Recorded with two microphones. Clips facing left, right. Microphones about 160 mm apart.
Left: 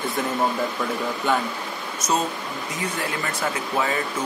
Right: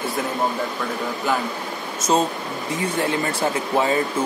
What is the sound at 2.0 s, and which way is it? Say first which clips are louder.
Speech: right 4 dB; 25° right (ahead or behind).